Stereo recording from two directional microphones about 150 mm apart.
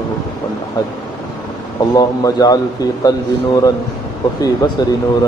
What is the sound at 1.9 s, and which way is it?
Speech, 25° left (ahead or behind).